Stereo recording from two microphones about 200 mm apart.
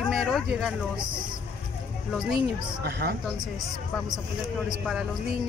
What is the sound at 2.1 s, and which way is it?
Speech, centre (ahead or behind).